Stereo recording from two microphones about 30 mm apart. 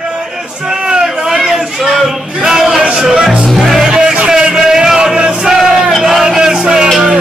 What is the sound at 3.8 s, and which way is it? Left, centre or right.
Music, right.